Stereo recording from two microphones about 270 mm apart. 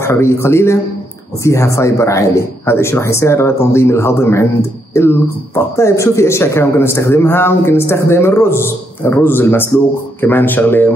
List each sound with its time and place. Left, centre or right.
0.0 s speech: centre